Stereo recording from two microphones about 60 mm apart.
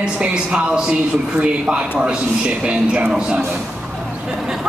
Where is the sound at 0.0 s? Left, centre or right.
Centre.